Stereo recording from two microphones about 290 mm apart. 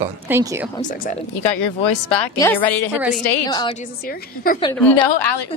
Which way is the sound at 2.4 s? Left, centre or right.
Centre.